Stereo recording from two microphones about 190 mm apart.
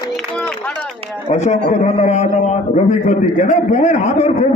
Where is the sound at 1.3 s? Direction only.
35° left (ahead or behind).